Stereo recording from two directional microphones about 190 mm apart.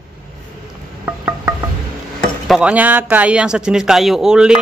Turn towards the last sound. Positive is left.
turn(degrees=-5)  # may be behind; listen again after turning